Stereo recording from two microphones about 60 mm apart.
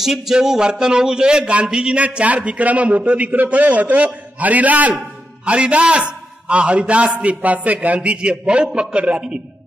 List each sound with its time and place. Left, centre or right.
0.0 s a man's voice: centre